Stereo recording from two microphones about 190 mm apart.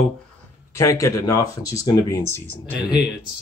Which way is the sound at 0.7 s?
15° left (ahead or behind).